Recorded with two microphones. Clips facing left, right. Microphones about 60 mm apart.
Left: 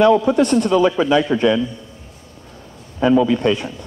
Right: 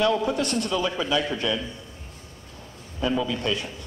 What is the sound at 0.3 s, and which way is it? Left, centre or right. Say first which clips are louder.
A man's voice: left 10 dB; left.